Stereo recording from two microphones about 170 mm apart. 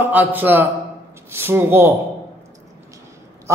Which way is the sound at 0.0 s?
10° right (ahead or behind).